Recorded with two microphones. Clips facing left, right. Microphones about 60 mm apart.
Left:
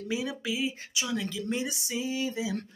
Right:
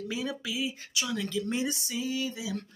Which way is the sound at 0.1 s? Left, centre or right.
Centre.